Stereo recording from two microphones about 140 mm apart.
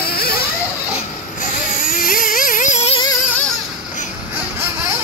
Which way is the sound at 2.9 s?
30° left (ahead or behind).